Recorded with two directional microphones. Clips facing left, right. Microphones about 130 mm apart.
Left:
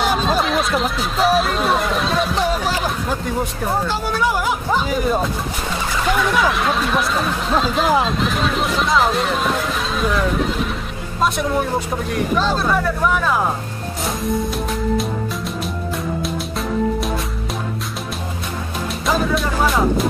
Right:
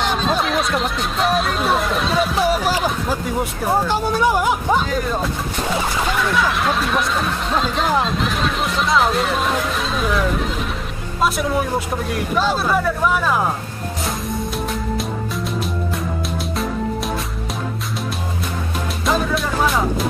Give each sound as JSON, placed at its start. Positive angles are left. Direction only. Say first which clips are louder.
{"t": 0.0, "sound": "chatter", "louder": "left 1 dB", "side_deg": 5}
{"t": 3.8, "sound": "speech", "louder": "right 2 dB", "side_deg": -15}
{"t": 4.8, "sound": "speech", "louder": "left 2 dB", "side_deg": 10}
{"t": 19.0, "sound": "music", "louder": "left 1 dB", "side_deg": 0}